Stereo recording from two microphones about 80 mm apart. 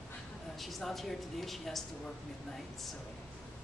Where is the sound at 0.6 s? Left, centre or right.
Centre.